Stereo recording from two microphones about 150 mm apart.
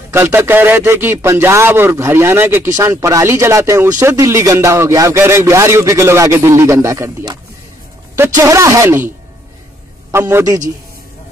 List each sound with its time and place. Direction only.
0.1 s a man's voice: 15° right (ahead or behind)
10.1 s a man's voice: 20° right (ahead or behind)